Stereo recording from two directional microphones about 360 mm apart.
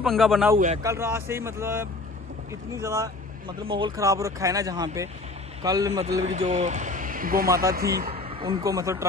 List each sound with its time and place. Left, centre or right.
0.0 s a man's voice: centre